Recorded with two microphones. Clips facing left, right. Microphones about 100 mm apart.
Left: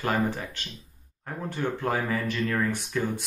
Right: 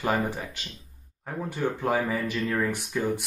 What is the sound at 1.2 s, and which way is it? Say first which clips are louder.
Speech: right 1 dB; 10° right (ahead or behind).